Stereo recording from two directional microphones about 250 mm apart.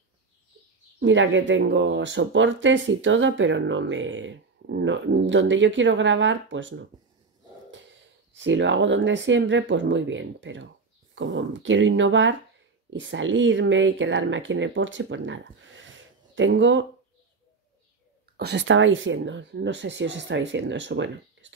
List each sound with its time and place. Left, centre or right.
0.9 s speech: right
8.3 s speech: right
18.4 s speech: right